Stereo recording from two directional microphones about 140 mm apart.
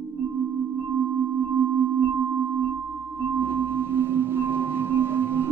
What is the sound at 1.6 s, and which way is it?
Singing bowl, 15° right (ahead or behind).